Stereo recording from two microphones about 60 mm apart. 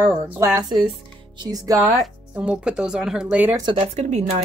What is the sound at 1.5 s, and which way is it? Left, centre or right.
Speech, right.